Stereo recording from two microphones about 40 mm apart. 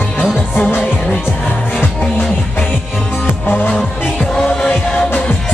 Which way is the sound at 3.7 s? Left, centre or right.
Left.